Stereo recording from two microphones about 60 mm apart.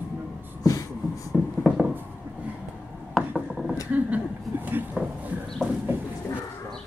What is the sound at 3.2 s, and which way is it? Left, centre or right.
Rub, centre.